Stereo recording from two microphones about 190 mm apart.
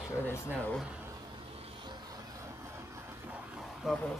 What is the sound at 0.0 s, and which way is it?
Speech, 10° left (ahead or behind).